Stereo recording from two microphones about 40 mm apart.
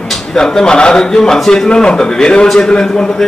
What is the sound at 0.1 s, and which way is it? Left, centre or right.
A man's voice, centre.